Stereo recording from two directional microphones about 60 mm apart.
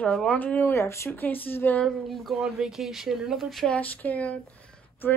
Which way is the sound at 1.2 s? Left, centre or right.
Left.